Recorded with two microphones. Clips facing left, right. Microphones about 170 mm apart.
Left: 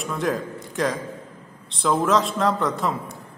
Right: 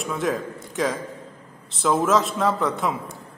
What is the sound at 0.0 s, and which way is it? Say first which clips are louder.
A man's voice: even; centre (ahead or behind).